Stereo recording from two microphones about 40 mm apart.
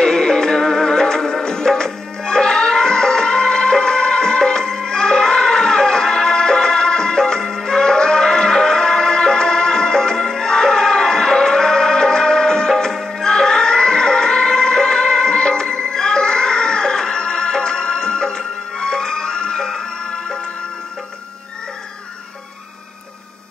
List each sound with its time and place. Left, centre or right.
0.0 s music: centre